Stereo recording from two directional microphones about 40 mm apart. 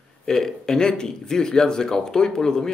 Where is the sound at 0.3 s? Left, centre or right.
Centre.